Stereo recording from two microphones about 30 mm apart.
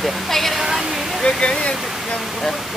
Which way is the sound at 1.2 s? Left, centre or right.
Left.